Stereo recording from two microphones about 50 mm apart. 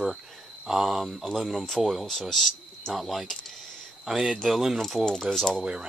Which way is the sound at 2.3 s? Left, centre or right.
Centre.